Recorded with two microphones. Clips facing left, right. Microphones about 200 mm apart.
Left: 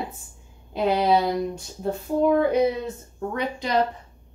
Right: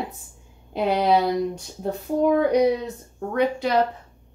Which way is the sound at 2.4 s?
15° right (ahead or behind).